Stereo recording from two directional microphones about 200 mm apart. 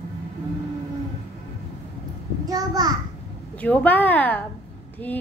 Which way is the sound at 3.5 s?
10° left (ahead or behind).